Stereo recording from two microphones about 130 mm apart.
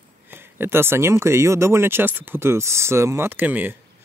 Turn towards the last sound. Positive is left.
turn(degrees=-15)  # may be behind; listen again after turning